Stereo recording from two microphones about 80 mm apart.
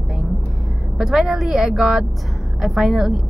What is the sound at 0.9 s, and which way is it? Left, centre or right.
A woman's voice, centre.